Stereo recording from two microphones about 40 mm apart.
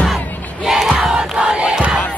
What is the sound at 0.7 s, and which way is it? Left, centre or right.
Battle cry, centre.